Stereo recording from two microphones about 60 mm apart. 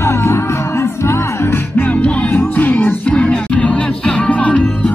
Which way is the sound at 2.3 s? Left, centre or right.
Left.